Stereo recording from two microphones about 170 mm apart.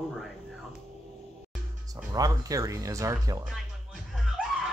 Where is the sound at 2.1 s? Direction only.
20° right (ahead or behind).